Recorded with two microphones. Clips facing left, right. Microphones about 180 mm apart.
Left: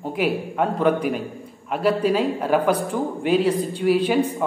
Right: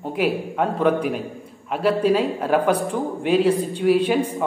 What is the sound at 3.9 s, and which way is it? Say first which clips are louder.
Speech: right 1 dB; 5° left (ahead or behind).